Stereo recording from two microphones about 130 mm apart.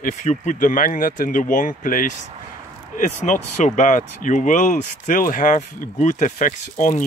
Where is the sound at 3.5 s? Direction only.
75° left (ahead or behind).